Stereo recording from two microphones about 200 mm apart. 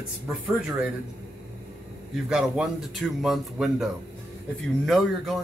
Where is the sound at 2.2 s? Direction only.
5° right (ahead or behind).